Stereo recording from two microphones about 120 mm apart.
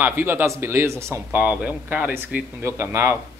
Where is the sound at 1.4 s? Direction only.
10° right (ahead or behind).